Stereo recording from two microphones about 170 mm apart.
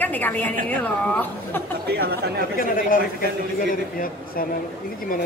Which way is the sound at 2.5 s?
55° left (ahead or behind).